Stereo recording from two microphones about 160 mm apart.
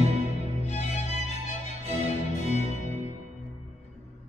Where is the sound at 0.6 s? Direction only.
45° left (ahead or behind).